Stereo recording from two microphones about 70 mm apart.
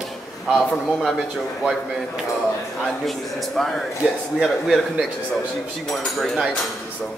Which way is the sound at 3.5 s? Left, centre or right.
Centre.